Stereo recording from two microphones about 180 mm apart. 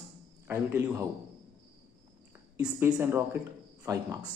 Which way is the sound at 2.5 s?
10° right (ahead or behind).